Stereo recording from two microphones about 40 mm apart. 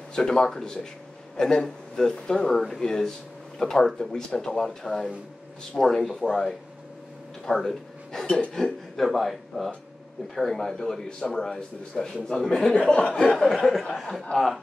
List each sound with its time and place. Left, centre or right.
0.1 s a man's voice: centre
4.1 s a man's voice: left
7.4 s a man's voice: centre
12.8 s chuckle: left
13.6 s speech: centre
14.2 s a man's voice: centre